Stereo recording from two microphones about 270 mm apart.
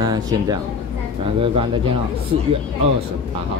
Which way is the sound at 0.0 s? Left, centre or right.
Centre.